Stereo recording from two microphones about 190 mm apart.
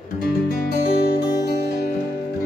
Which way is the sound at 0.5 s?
55° left (ahead or behind).